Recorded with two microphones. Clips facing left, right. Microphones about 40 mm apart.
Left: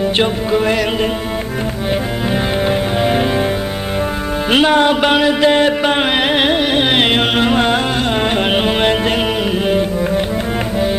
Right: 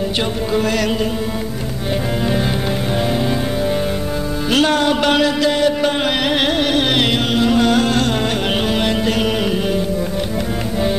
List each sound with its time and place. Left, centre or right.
0.2 s music: left
2.2 s music: left
4.5 s music: left
5.5 s music: left
6.3 s music: left